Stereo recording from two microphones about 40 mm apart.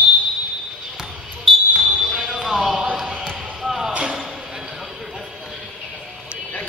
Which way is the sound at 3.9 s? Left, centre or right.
Right.